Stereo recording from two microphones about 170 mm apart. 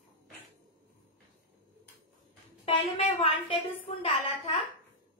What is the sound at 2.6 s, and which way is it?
A child's voice, 35° left (ahead or behind).